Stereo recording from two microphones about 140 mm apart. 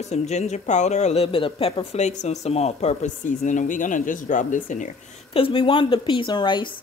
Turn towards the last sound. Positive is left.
turn(degrees=35)  # may be behind; listen again after turning